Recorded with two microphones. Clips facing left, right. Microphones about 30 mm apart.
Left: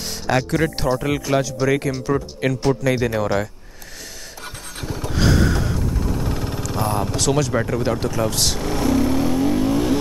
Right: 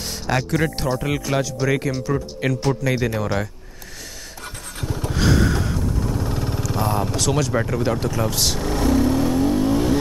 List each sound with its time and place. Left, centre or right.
0.3 s speech: centre
4.7 s vehicle: centre